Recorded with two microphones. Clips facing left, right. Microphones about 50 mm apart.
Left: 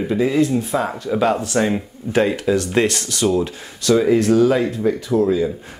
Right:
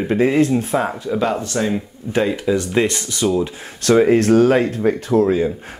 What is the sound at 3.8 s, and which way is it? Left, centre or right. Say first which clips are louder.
Speech: right 2 dB; right.